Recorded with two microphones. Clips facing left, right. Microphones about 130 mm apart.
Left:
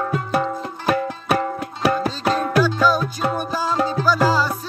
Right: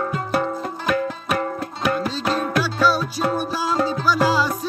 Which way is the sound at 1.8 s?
35° left (ahead or behind).